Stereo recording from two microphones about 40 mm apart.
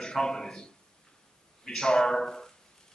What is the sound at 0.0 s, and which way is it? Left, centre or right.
A man's voice, centre.